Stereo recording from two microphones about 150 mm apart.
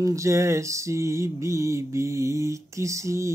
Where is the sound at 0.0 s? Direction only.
20° right (ahead or behind).